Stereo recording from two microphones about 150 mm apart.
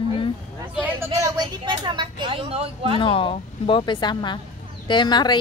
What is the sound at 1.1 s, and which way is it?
A woman's voice, 25° right (ahead or behind).